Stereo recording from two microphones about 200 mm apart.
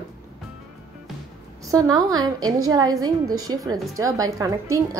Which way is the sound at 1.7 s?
20° right (ahead or behind).